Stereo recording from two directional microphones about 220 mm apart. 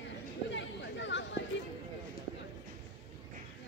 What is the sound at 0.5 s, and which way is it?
Chatter, 55° left (ahead or behind).